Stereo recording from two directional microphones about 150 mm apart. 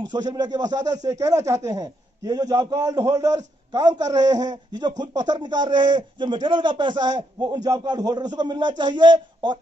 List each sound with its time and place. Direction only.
0.0 s a man's voice: 30° right (ahead or behind)